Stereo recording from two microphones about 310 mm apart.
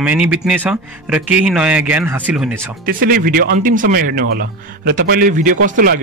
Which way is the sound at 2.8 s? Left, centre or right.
Right.